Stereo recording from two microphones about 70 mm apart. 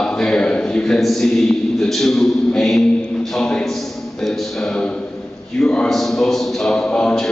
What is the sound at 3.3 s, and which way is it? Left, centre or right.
A capella, centre.